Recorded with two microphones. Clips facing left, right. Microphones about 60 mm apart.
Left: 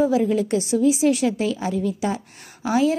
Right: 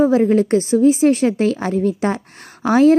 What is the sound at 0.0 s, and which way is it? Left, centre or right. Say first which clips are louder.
A woman's voice: right 5 dB; right.